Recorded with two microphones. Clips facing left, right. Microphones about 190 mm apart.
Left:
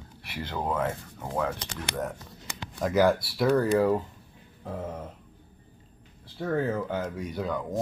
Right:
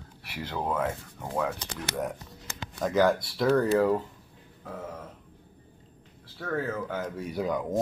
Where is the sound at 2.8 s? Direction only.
10° left (ahead or behind).